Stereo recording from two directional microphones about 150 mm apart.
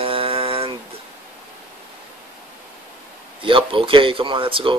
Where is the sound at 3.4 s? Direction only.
35° right (ahead or behind).